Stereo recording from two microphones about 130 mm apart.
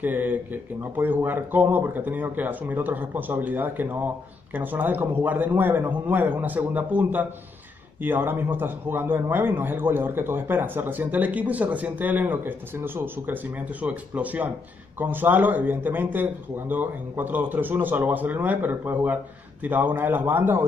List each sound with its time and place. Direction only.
0.0 s a man's voice: 15° right (ahead or behind)